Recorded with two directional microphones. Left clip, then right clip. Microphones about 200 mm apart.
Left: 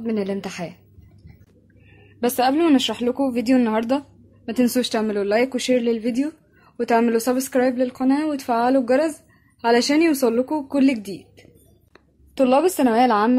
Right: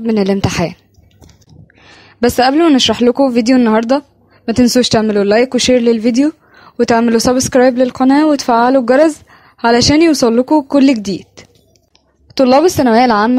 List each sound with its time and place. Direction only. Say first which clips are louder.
0.0 s a woman's voice: right 11 dB; 45° right (ahead or behind)
2.1 s speech: right 9 dB; 45° right (ahead or behind)